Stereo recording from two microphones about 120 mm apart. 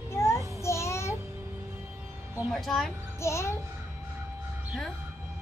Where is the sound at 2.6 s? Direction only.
Centre (ahead or behind).